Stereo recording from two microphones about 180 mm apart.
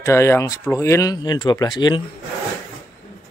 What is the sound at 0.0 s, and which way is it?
Speech, 15° left (ahead or behind).